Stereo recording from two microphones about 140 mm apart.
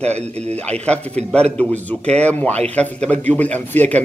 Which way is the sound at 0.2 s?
50° right (ahead or behind).